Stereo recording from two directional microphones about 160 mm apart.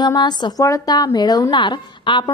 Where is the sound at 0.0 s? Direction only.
25° left (ahead or behind).